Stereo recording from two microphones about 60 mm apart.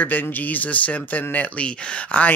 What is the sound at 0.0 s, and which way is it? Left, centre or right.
Speech, left.